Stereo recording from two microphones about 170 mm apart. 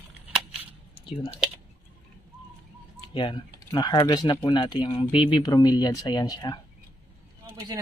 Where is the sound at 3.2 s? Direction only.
30° left (ahead or behind).